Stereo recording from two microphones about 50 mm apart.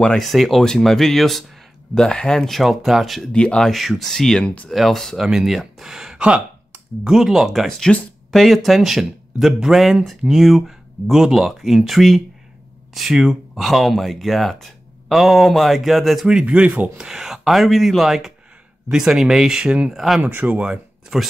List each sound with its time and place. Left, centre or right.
0.2 s speech: centre
2.0 s speech: centre
2.5 s speech: centre
3.3 s speech: centre
3.6 s speech: centre
6.1 s speech: centre
7.1 s speech: centre
7.9 s speech: centre
8.3 s speech: centre
16.3 s speech: centre
16.9 s speech: centre
19.9 s speech: centre
20.2 s speech: right
20.5 s speech: right